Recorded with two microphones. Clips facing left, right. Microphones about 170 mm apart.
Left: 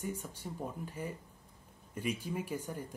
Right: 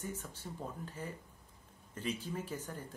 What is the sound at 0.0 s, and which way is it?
Speech, 10° left (ahead or behind).